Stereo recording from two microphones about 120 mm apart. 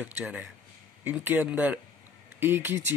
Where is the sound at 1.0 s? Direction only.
15° right (ahead or behind).